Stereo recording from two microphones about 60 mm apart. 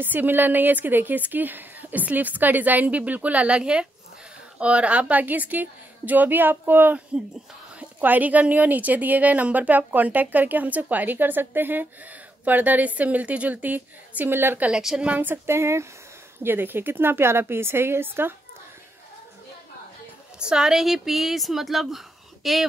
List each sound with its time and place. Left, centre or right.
0.0 s a woman's voice: right
8.0 s a woman's voice: right
14.7 s a woman's voice: centre
15.0 s a woman's voice: right
15.4 s speech: right
16.4 s a woman's voice: right
20.3 s speech: centre